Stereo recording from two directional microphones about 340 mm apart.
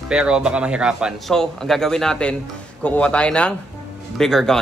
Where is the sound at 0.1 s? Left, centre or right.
Centre.